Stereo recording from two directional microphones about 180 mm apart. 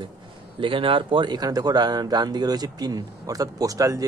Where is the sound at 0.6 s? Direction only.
30° right (ahead or behind).